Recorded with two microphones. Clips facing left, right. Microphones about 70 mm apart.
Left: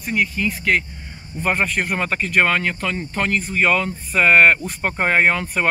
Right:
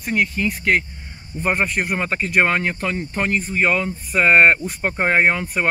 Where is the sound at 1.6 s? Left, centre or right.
Centre.